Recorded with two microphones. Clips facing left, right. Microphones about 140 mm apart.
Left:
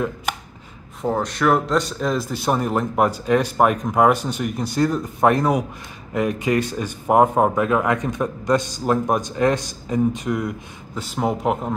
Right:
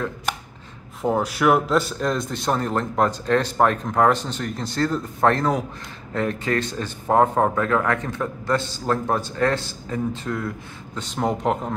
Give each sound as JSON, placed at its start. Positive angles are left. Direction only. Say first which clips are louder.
{"t": 1.0, "sound": "a man's voice", "louder": "even", "side_deg": -5}
{"t": 11.0, "sound": "speech", "louder": "left 1 dB", "side_deg": 5}